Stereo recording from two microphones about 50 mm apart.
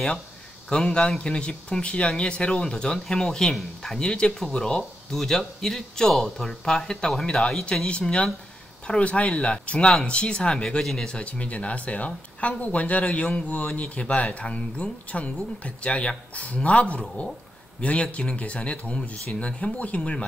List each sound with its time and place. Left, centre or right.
0.7 s speech: centre
7.7 s speech: left
10.8 s speech: centre
11.1 s speech: left